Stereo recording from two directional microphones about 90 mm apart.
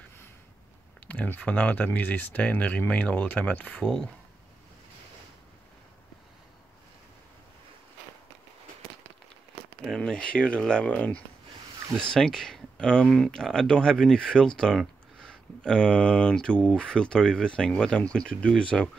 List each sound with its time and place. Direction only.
1.0 s speech: 15° left (ahead or behind)
9.8 s speech: 10° left (ahead or behind)